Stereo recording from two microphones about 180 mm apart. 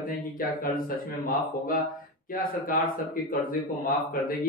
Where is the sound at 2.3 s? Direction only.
50° left (ahead or behind).